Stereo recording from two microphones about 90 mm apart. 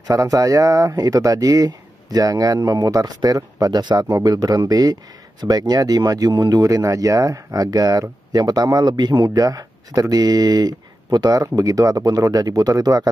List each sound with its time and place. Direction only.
0.1 s speech: 40° right (ahead or behind)